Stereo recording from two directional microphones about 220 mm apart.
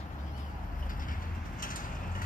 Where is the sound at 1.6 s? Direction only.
40° left (ahead or behind).